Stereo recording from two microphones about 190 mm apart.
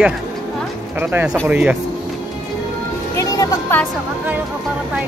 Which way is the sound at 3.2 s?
15° left (ahead or behind).